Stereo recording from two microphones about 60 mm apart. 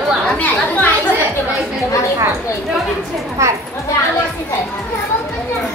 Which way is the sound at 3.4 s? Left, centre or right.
Right.